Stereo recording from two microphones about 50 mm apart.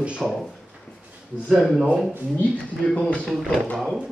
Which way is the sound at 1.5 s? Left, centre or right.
Centre.